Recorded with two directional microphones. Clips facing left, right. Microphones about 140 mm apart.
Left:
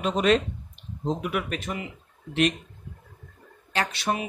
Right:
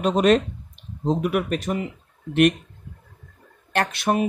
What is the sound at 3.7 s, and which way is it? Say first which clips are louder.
Speech: right 5 dB; 55° right (ahead or behind).